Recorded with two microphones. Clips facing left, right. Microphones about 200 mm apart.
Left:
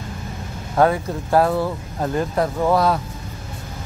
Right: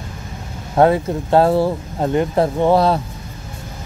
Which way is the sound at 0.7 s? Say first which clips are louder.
Right 4 dB; 25° right (ahead or behind).